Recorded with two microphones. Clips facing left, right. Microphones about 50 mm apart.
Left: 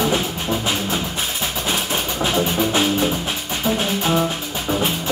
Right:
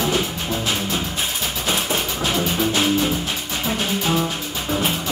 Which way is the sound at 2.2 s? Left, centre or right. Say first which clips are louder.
Left 3 dB; centre.